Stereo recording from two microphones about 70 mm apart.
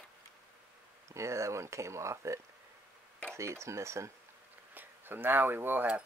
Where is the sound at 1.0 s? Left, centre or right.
Right.